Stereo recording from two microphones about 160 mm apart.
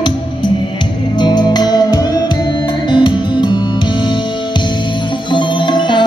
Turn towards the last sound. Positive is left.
turn(degrees=30)  # may be behind; listen again after turning